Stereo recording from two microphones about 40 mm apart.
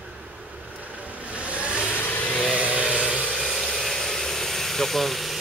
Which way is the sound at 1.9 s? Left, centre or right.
Left.